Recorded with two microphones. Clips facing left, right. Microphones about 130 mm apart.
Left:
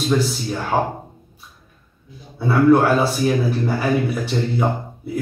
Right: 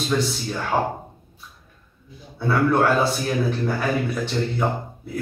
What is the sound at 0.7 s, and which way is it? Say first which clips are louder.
Speech: left 2 dB; 10° left (ahead or behind).